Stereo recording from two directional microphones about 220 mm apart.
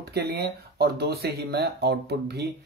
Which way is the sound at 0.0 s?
45° right (ahead or behind).